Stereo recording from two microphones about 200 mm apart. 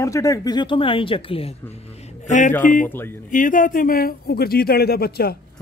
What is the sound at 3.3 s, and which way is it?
Speech, 40° left (ahead or behind).